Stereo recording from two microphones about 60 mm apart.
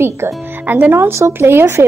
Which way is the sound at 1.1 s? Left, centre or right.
Right.